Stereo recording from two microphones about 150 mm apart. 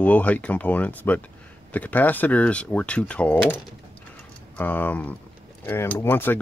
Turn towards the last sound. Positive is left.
turn(degrees=15)  # may be behind; listen again after turning